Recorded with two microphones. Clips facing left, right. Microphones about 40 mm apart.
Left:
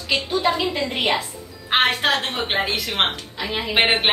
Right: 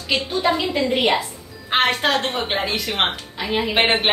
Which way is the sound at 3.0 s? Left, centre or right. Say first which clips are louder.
Right 1 dB; centre.